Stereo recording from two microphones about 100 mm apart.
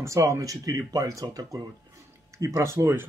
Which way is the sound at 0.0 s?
30° right (ahead or behind).